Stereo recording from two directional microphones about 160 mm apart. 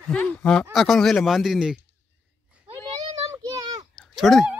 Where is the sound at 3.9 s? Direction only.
Centre (ahead or behind).